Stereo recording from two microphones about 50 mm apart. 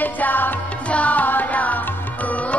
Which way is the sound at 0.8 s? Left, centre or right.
Left.